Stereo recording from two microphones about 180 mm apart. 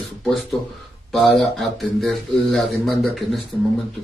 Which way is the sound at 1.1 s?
Centre (ahead or behind).